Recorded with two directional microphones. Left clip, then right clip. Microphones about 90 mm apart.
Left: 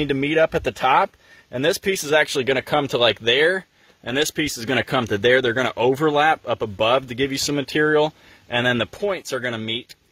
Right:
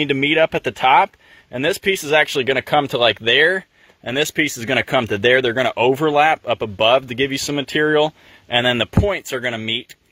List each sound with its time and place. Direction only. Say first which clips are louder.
0.0 s speech: right 3 dB; 10° right (ahead or behind)
5.7 s speech: right 3 dB; centre (ahead or behind)